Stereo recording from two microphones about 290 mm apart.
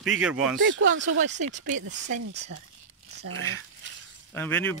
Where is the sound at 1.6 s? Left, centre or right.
Right.